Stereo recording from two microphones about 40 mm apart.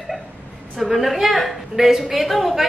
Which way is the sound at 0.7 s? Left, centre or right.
Centre.